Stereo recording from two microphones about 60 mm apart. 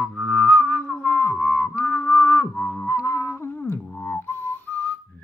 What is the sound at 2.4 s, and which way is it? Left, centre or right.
Music, left.